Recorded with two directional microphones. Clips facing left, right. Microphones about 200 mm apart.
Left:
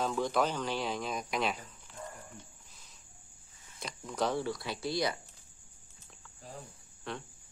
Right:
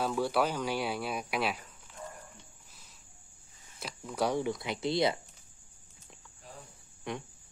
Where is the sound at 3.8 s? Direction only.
5° right (ahead or behind); by 5.2 s 25° right (ahead or behind).